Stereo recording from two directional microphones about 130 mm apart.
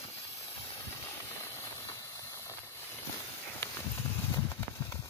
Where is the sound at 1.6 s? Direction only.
20° left (ahead or behind).